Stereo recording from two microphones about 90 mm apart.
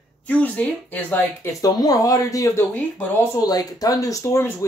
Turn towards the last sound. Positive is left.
turn(degrees=40)  # may be behind; listen again after turning